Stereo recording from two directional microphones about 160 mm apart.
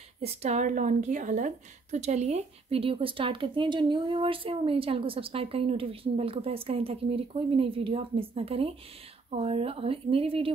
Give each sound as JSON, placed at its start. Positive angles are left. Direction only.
{"t": 0.2, "sound": "a woman's voice", "side_deg": -45}